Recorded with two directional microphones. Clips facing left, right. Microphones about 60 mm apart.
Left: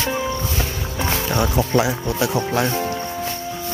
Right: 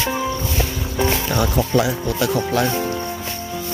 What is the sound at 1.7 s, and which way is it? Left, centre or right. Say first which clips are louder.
Speech: even; left.